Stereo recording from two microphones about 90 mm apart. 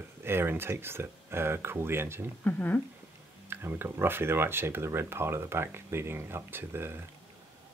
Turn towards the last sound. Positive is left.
turn(degrees=-25)  # may be behind; listen again after turning